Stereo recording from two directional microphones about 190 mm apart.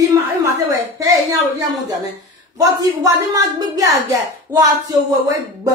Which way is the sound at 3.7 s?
15° right (ahead or behind).